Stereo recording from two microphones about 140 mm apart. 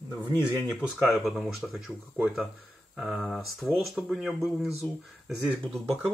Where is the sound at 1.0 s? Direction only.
Centre (ahead or behind).